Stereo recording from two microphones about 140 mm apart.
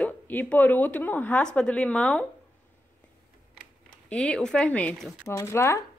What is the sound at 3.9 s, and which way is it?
Speech, 5° left (ahead or behind).